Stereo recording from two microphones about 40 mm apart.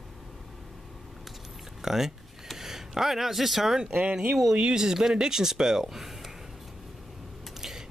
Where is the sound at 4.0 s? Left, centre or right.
Right; by 6.3 s centre.